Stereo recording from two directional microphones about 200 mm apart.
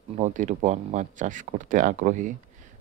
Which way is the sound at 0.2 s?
40° right (ahead or behind).